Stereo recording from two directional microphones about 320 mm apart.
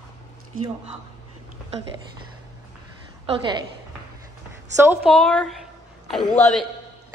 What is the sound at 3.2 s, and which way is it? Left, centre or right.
Speech, centre.